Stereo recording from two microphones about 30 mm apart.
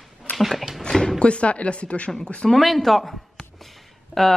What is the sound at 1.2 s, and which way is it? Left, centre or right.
Speech, left.